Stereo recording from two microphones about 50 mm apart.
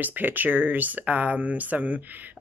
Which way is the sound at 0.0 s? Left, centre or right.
Right.